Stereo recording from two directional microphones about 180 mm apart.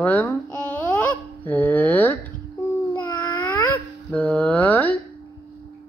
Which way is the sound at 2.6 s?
10° left (ahead or behind).